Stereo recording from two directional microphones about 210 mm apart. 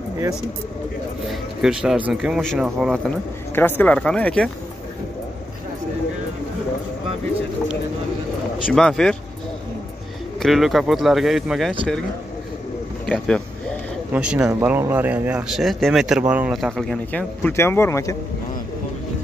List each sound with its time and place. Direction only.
1.3 s speech: 5° right (ahead or behind)
3.5 s speech: 10° left (ahead or behind)
8.6 s speech: 5° left (ahead or behind)
10.4 s speech: centre (ahead or behind)
13.0 s speech: 5° left (ahead or behind)